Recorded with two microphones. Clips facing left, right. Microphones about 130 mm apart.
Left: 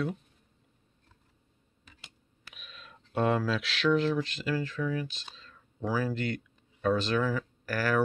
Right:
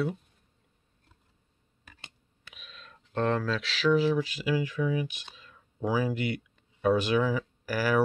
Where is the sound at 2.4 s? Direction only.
Centre (ahead or behind).